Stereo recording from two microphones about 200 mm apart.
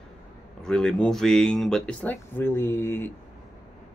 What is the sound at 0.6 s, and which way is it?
Speech, 5° left (ahead or behind).